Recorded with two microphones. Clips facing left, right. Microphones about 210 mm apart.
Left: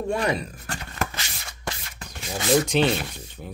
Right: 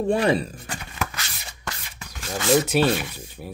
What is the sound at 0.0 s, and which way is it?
Speech, 30° right (ahead or behind).